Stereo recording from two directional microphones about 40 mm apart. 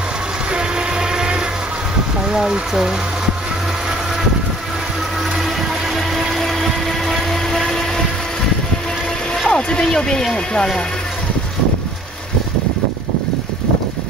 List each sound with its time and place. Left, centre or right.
0.5 s music: right
2.3 s speech: centre
6.1 s a sound: centre
9.5 s speech: centre